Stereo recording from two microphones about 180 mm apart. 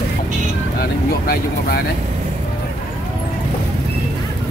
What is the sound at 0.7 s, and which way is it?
Vehicle, 60° left (ahead or behind).